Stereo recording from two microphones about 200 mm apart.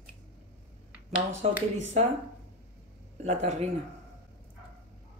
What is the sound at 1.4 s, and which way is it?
Speech, 35° right (ahead or behind).